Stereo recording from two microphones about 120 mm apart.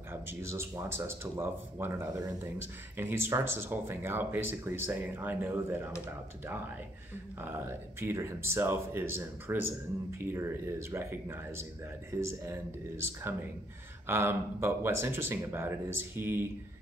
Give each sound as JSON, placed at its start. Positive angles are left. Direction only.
{"t": 0.1, "sound": "speech", "side_deg": -20}
{"t": 7.4, "sound": "speech", "side_deg": -20}